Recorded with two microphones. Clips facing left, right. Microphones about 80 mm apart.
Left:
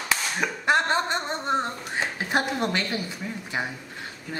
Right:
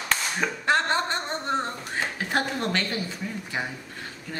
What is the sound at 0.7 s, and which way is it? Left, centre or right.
A woman's voice, centre.